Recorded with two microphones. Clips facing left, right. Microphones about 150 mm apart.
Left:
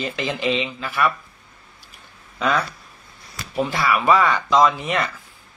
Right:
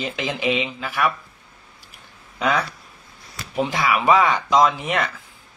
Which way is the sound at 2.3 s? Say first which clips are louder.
Even; 10° right (ahead or behind).